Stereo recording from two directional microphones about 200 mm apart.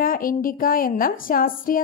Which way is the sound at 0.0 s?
45° left (ahead or behind).